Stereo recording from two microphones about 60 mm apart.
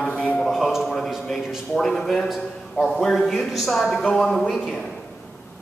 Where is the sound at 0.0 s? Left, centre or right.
Left.